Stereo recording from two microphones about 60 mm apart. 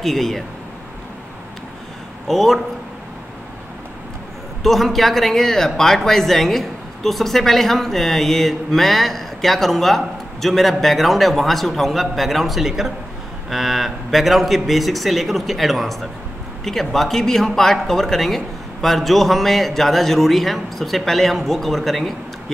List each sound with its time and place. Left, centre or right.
0.0 s speech: centre
2.2 s speech: centre
4.6 s speech: centre